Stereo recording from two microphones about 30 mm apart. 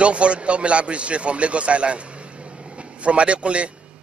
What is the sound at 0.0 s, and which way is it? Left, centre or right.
A man's voice, right.